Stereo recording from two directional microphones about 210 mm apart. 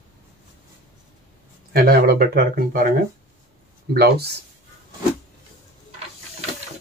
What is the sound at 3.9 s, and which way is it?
Speech, 50° right (ahead or behind).